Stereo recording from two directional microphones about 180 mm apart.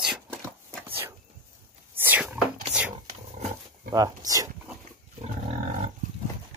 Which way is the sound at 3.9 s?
20° right (ahead or behind).